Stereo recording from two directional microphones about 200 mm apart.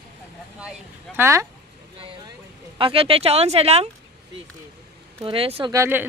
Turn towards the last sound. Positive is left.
turn(degrees=-15)  # may be behind; listen again after turning